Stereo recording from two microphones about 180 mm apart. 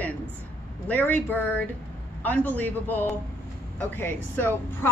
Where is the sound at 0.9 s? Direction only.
10° left (ahead or behind).